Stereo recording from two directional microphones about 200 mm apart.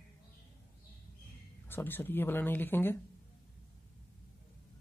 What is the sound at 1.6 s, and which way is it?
Speech, 10° left (ahead or behind).